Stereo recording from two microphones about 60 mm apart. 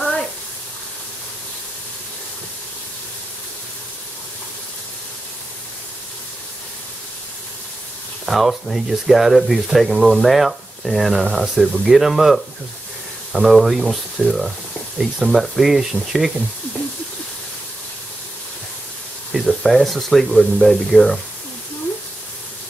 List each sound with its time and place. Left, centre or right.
8.3 s speech: centre
19.3 s speech: centre